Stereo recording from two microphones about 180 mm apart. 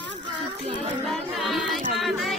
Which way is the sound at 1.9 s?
Centre (ahead or behind).